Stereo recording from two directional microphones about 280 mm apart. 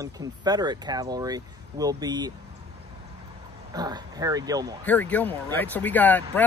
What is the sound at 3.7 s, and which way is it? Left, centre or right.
Speech, centre.